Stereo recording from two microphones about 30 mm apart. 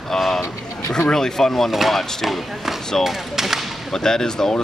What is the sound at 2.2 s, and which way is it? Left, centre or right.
Speech, centre.